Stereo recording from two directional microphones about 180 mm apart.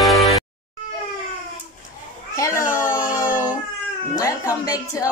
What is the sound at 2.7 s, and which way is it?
Dog, 10° right (ahead or behind).